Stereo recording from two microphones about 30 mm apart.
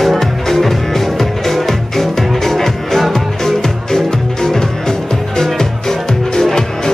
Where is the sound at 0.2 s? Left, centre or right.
Centre.